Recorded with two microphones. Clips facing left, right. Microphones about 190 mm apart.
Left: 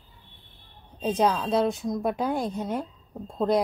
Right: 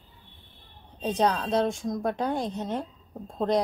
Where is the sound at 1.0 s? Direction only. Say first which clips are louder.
Left 1 dB; 10° left (ahead or behind).